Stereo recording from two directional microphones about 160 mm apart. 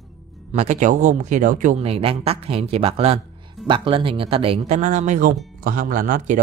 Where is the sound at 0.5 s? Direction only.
45° right (ahead or behind).